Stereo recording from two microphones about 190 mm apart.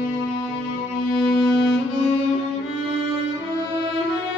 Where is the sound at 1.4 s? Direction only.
Centre (ahead or behind).